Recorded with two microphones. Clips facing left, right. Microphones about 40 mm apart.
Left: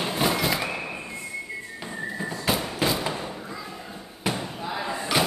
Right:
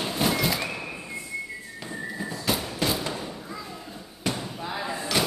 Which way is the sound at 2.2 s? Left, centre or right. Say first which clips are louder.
Left 2 dB; centre.